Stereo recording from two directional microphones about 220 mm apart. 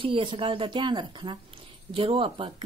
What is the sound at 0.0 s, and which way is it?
A woman's voice, 25° right (ahead or behind).